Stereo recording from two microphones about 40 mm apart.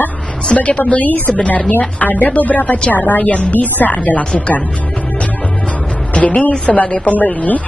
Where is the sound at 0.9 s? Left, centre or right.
Left.